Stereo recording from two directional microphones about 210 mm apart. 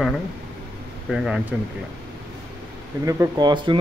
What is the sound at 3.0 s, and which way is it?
Speech, 20° right (ahead or behind).